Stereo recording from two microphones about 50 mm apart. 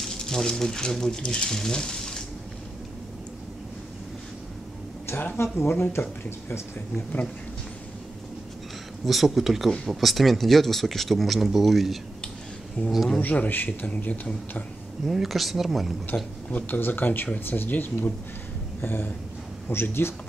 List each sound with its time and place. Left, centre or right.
0.0 s speech: centre
5.4 s speech: left
9.0 s speech: centre
12.8 s a man's voice: left
15.0 s speech: centre
16.1 s a man's voice: left
18.8 s a sound: left
19.7 s speech: left